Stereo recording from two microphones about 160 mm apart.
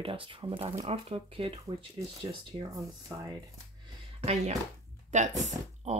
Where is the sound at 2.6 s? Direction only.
25° right (ahead or behind).